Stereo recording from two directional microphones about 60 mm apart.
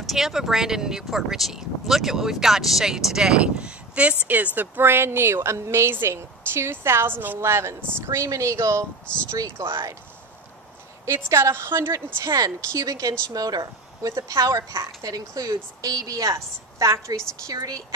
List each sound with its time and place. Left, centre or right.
0.0 s speech: centre; by 4.2 s right
4.6 s speech: right
7.3 s speech: right
9.1 s speech: centre
9.4 s speech: right
11.1 s speech: right
11.9 s a woman's voice: right
13.3 s a woman's voice: right
15.0 s a woman's voice: right
17.5 s a woman's voice: right